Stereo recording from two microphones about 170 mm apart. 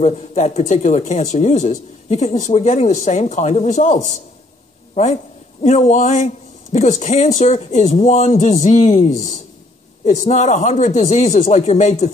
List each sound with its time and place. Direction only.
0.0 s a man's voice: 40° left (ahead or behind)